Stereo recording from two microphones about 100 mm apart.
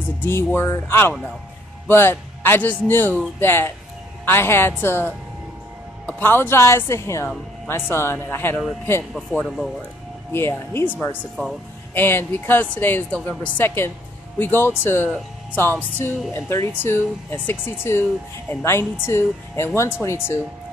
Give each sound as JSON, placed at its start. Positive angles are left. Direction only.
{"t": 0.2, "sound": "speech", "side_deg": 20}
{"t": 9.1, "sound": "speech", "side_deg": 5}
{"t": 10.3, "sound": "speech", "side_deg": 25}